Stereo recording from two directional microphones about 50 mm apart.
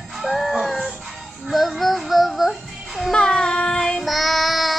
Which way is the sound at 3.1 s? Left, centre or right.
Centre.